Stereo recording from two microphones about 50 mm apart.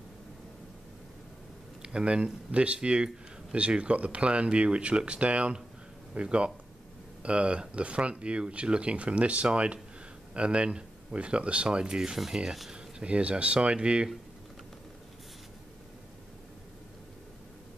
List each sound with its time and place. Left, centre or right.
1.8 s speech: centre